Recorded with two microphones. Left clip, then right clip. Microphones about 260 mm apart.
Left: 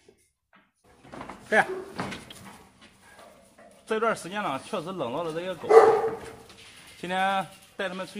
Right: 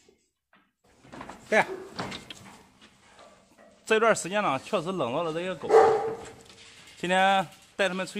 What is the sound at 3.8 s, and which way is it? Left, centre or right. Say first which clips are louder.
Speech: right 4 dB; right.